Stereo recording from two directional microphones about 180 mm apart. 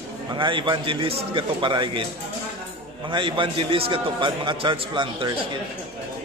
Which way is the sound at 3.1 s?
25° right (ahead or behind).